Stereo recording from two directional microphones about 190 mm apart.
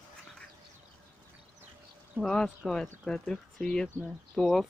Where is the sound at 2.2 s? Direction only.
Centre (ahead or behind).